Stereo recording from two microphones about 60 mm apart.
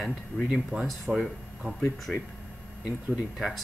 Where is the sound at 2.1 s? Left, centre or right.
Centre.